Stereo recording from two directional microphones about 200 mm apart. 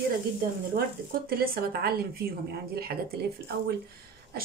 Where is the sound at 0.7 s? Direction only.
45° right (ahead or behind).